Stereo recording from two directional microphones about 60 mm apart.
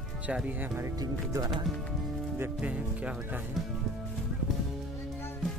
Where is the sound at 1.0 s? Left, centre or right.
Right.